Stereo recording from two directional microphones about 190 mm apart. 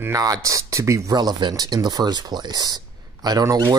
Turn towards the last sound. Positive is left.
turn(degrees=-20)  # may be behind; listen again after turning